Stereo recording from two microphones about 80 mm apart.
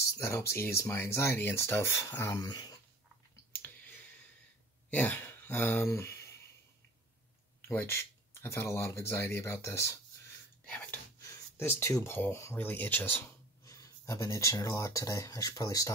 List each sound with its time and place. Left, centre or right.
0.0 s speech: left
2.4 s speech: left
3.5 s clicking: left
4.9 s speech: left
5.9 s speech: left
7.6 s speech: left
10.6 s a sound: centre
11.5 s speech: left
13.7 s speech: left